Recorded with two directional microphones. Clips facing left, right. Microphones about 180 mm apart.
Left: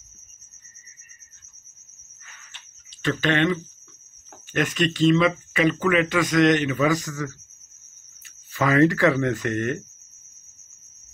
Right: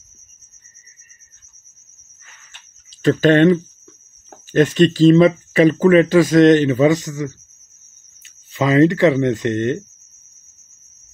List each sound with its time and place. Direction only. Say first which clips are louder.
3.0 s speech: right 10 dB; 40° right (ahead or behind); by 9.8 s 25° right (ahead or behind)